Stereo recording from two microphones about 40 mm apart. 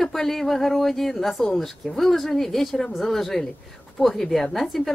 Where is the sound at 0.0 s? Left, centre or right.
Centre.